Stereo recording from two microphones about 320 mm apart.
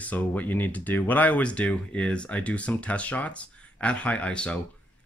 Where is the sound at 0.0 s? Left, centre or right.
Centre.